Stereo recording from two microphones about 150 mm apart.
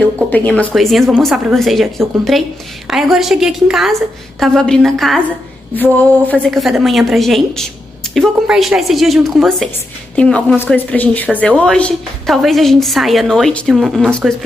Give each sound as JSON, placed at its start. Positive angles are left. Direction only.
{"t": 0.3, "sound": "speech", "side_deg": 10}
{"t": 0.7, "sound": "a woman's voice", "side_deg": 0}